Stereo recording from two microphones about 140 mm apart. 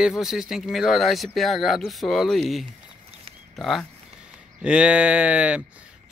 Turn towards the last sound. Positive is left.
turn(degrees=-10)  # may be behind; listen again after turning